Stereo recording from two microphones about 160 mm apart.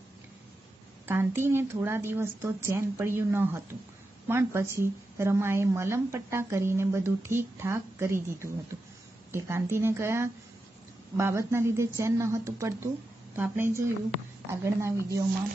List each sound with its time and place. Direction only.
1.0 s a woman's voice: 15° right (ahead or behind)